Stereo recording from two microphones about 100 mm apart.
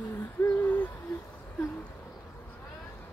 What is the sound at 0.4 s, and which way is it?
Hoot, 25° left (ahead or behind).